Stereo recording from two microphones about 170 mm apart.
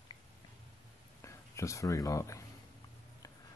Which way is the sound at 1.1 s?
15° left (ahead or behind).